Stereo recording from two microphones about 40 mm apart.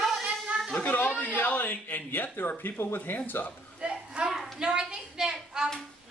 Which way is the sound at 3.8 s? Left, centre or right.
Right.